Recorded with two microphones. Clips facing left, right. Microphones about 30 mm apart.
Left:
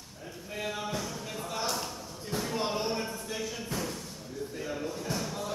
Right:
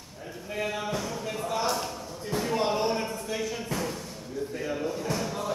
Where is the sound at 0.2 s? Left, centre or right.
Centre.